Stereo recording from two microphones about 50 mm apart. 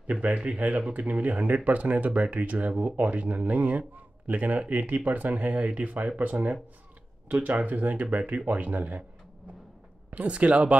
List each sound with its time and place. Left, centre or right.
0.0 s speech: right
10.1 s speech: right